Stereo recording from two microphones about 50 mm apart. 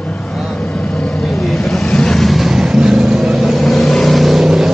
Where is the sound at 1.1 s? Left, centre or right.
Centre.